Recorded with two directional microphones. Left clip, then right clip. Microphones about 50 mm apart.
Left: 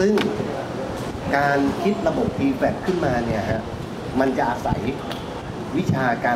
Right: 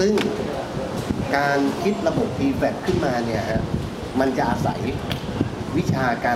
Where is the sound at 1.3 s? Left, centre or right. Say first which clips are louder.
Left 1 dB; centre.